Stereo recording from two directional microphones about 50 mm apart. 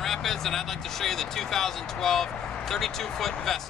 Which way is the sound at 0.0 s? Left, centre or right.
Centre.